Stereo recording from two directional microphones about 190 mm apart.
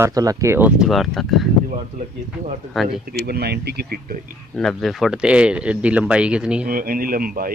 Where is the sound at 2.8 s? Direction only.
Centre (ahead or behind).